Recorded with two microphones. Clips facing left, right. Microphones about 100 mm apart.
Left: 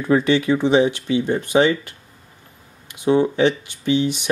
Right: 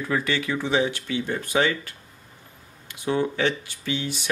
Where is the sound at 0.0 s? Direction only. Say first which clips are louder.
Left 9 dB; 25° left (ahead or behind).